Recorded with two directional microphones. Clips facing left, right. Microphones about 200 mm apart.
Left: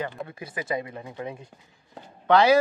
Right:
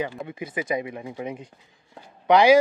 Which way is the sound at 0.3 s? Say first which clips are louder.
Right 3 dB; 20° right (ahead or behind).